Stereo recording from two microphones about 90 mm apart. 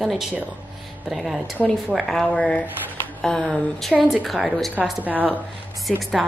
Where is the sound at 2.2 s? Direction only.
15° left (ahead or behind).